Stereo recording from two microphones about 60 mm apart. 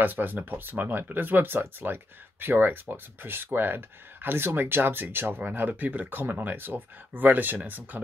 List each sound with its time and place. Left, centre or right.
0.0 s speech: right